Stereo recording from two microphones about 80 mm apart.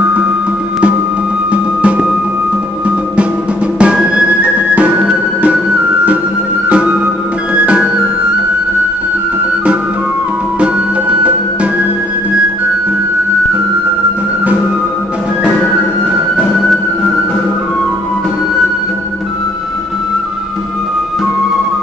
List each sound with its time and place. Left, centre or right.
1.5 s music: centre
3.8 s music: centre
7.5 s music: centre
10.6 s music: centre